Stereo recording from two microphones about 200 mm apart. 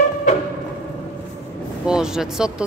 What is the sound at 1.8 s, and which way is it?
Speech, 5° right (ahead or behind).